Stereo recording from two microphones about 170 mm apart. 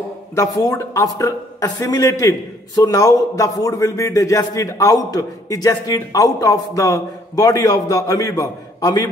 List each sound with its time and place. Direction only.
0.4 s speech: 20° left (ahead or behind)